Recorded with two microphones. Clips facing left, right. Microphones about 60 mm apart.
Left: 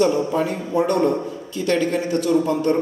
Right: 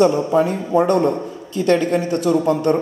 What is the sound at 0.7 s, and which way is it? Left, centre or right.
A man's voice, right.